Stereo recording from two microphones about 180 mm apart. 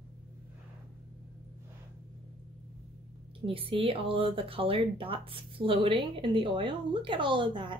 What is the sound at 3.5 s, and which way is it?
Speech, 30° right (ahead or behind).